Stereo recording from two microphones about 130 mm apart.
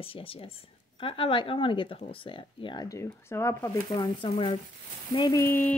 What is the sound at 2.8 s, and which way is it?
Speech, 20° left (ahead or behind).